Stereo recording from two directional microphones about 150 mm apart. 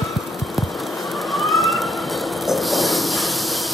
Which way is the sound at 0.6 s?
Centre (ahead or behind).